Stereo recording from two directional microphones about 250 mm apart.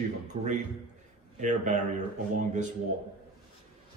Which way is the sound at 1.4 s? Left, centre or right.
Right.